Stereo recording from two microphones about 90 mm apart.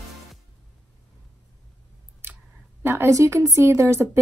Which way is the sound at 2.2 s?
25° right (ahead or behind).